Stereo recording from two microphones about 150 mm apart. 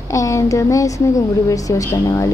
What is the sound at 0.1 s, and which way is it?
Speech, 20° left (ahead or behind).